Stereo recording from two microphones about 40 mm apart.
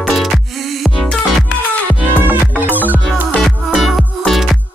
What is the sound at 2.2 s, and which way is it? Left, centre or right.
Music, right.